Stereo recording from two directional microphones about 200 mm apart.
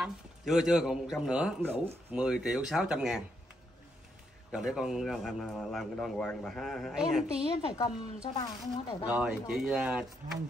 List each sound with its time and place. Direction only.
0.0 s a man's voice: centre (ahead or behind)
4.5 s a man's voice: 5° right (ahead or behind)
7.7 s speech: 25° left (ahead or behind)
9.0 s a man's voice: 5° right (ahead or behind)